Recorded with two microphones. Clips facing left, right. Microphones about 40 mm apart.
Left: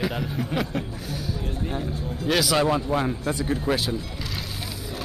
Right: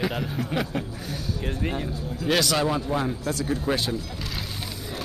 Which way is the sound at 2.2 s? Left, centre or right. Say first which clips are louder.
Even; centre.